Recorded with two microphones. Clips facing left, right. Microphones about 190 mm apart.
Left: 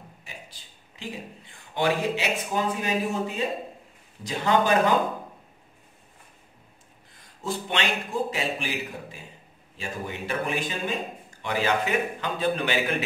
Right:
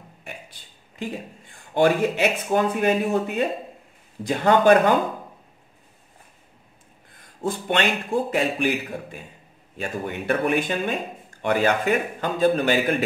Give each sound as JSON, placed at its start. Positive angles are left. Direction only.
{"t": 0.2, "sound": "a man's voice", "side_deg": -55}
{"t": 7.2, "sound": "a man's voice", "side_deg": -50}